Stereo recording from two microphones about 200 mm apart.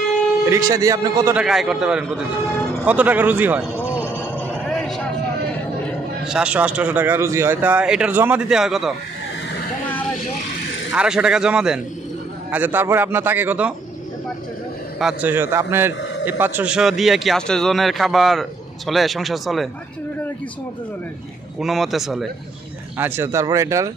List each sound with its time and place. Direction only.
0.5 s speech: 15° right (ahead or behind)
1.3 s a man's voice: 5° right (ahead or behind)
3.7 s music: 10° left (ahead or behind)
4.2 s a sound: 5° left (ahead or behind)
6.2 s speech: 5° right (ahead or behind)
10.9 s a man's voice: 5° right (ahead or behind)
15.0 s a man's voice: 5° right (ahead or behind)
21.5 s a man's voice: centre (ahead or behind)
22.9 s speech: 10° right (ahead or behind)